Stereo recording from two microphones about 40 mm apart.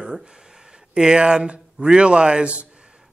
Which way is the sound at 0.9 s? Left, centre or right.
Right.